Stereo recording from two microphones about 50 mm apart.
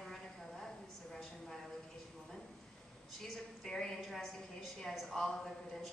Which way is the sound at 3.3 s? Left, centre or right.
Centre.